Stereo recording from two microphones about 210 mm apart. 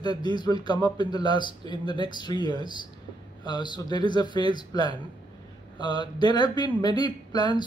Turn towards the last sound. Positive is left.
turn(degrees=20)  # may be behind; listen again after turning